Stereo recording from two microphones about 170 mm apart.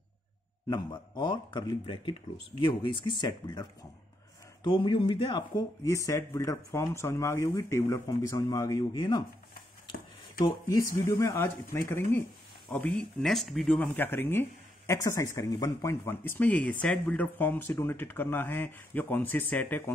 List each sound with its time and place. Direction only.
0.7 s speech: 25° left (ahead or behind)
4.6 s speech: 30° left (ahead or behind)
5.9 s speech: 15° left (ahead or behind)
10.4 s speech: 25° left (ahead or behind)
13.2 s speech: centre (ahead or behind)